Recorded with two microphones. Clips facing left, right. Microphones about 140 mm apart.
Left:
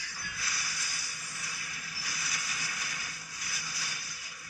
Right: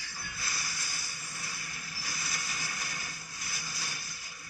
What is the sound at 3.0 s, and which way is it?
Music, 25° right (ahead or behind).